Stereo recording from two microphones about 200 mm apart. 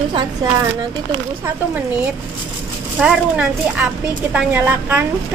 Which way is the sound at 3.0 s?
5° right (ahead or behind).